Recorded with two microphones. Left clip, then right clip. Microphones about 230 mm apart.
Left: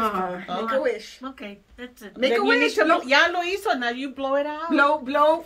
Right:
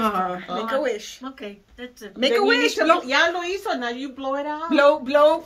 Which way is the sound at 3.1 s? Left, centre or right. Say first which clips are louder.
Left 1 dB; left.